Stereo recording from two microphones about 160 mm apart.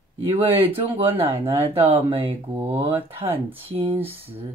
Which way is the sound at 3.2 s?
15° right (ahead or behind).